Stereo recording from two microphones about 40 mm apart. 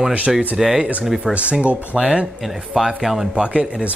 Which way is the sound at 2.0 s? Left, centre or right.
Right.